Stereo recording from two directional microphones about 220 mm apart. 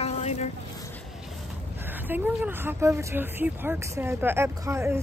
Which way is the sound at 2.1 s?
10° right (ahead or behind).